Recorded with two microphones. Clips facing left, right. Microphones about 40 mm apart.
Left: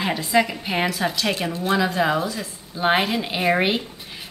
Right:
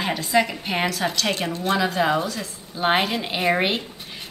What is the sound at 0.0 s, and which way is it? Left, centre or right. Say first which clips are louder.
A woman's voice: left 1 dB; centre.